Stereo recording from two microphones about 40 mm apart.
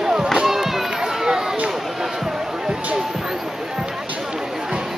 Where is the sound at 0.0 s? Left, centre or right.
Centre.